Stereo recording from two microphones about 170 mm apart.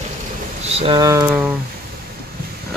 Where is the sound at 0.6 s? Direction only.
35° right (ahead or behind).